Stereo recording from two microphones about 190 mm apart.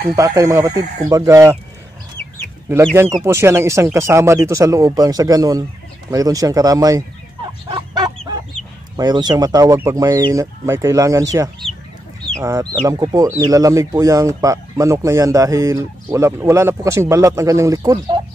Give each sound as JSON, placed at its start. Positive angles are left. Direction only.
{"t": 0.1, "sound": "speech", "side_deg": -15}
{"t": 2.7, "sound": "speech", "side_deg": -15}
{"t": 7.6, "sound": "fowl", "side_deg": -20}
{"t": 8.9, "sound": "speech", "side_deg": -20}
{"t": 12.4, "sound": "speech", "side_deg": -15}